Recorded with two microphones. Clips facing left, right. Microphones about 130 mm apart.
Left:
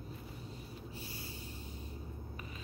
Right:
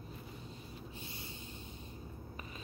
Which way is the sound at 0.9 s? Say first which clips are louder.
Left 1 dB; 20° right (ahead or behind).